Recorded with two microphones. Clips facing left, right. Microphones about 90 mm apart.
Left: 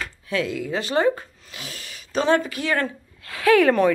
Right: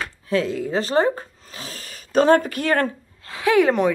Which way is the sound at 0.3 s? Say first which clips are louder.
Right 3 dB; 35° right (ahead or behind).